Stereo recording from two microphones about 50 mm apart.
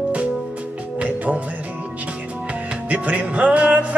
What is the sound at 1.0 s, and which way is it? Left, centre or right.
Music, right.